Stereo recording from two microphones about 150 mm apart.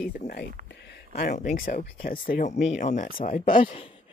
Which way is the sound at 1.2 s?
60° left (ahead or behind).